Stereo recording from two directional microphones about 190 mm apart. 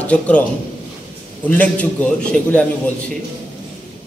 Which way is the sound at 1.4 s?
10° left (ahead or behind).